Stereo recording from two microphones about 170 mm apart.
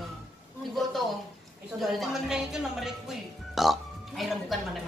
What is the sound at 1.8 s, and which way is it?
Speech, centre (ahead or behind).